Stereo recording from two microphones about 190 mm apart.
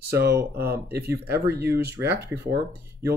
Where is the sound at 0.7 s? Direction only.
10° right (ahead or behind).